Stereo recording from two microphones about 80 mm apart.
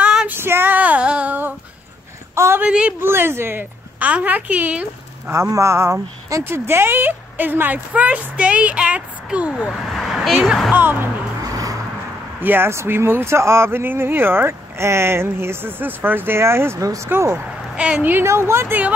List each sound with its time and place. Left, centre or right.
0.0 s child singing: centre
0.3 s female singing: right
2.3 s a sound: right
2.6 s a woman's voice: centre
3.0 s a woman's voice: right
5.3 s a woman's voice: right; by 9.8 s centre
9.8 s a sound: centre
10.2 s speech: centre
10.7 s a woman's voice: right
11.4 s music: right
12.4 s speech: right
16.8 s speech: right
17.7 s a woman's voice: centre
18.1 s speech: right